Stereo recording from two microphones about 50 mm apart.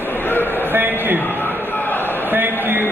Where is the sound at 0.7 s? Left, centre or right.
Right.